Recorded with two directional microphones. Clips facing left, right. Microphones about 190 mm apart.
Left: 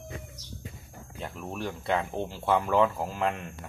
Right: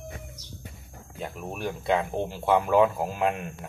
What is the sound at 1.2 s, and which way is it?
Speech, 15° right (ahead or behind).